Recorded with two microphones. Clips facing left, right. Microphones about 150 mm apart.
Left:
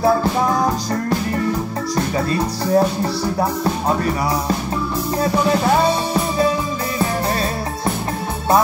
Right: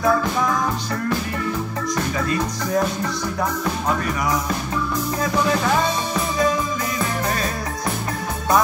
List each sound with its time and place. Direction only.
0.0 s music: 35° left (ahead or behind)
2.1 s music: 35° left (ahead or behind)
5.2 s music: 35° left (ahead or behind)